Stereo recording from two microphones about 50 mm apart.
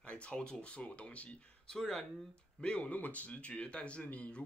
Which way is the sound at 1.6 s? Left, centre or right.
Centre.